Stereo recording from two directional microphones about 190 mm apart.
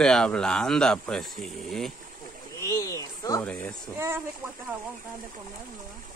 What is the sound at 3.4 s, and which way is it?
Speech, 5° left (ahead or behind).